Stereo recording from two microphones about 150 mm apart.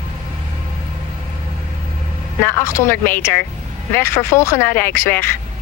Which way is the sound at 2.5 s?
15° left (ahead or behind).